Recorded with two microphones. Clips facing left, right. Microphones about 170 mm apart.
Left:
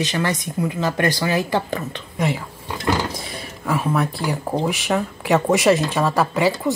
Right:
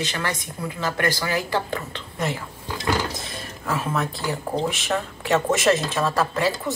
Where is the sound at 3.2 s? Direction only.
10° left (ahead or behind).